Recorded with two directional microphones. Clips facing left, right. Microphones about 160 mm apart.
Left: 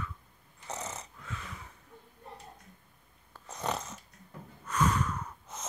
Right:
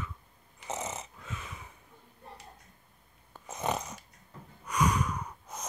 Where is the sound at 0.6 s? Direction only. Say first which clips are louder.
Right 3 dB; 15° right (ahead or behind).